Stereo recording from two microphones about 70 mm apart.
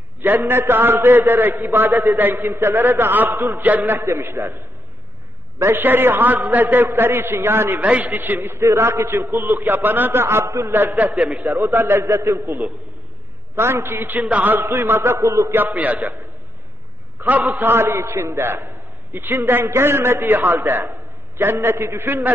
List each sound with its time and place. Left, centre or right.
0.2 s a man's voice: right
5.6 s a man's voice: right
7.8 s a man's voice: right
11.1 s a man's voice: centre
11.7 s a man's voice: right
15.5 s a man's voice: right
17.2 s a man's voice: right